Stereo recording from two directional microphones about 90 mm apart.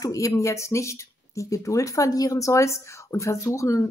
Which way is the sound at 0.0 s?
40° left (ahead or behind).